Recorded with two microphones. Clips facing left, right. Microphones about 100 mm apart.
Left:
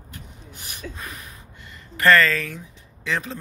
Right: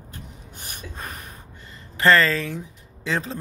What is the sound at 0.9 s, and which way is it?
Gasp, 45° right (ahead or behind).